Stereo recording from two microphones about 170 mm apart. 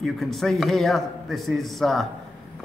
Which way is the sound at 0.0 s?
Centre (ahead or behind).